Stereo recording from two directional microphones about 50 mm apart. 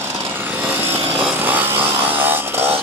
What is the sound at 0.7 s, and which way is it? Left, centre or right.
Chainsaw, right.